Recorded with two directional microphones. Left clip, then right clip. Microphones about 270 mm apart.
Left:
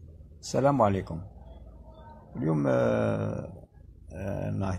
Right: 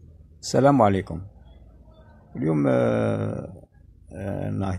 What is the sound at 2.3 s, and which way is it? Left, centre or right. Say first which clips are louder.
Speech: right 4 dB; right.